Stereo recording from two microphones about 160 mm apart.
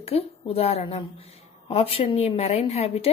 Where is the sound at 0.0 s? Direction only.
40° left (ahead or behind).